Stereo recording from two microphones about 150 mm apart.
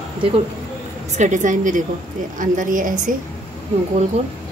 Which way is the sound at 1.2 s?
55° right (ahead or behind).